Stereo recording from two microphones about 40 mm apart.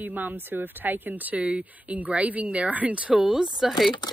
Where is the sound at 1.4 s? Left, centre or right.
Right.